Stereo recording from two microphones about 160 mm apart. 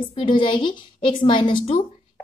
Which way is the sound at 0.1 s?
30° left (ahead or behind).